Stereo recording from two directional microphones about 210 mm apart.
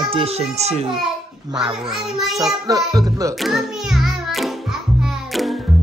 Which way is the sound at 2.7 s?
15° right (ahead or behind).